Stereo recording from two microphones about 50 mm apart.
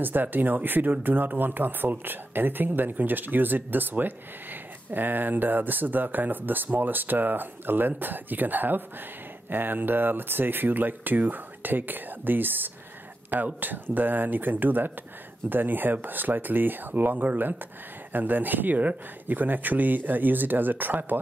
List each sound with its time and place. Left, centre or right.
0.0 s speech: right